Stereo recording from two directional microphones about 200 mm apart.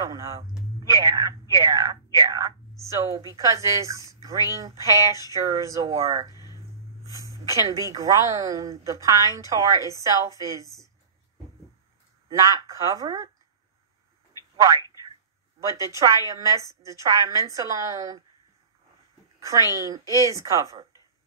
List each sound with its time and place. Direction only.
0.0 s speech: 15° right (ahead or behind)
0.7 s whispering: 20° right (ahead or behind)
1.5 s speech: 15° right (ahead or behind)
6.3 s a sound: 20° left (ahead or behind)
7.0 s speech: 15° right (ahead or behind)
12.3 s speech: 15° right (ahead or behind)
15.6 s speech: 15° right (ahead or behind)
19.4 s speech: 15° right (ahead or behind)